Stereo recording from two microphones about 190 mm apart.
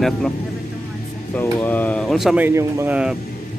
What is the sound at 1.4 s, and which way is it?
Speech, 10° left (ahead or behind).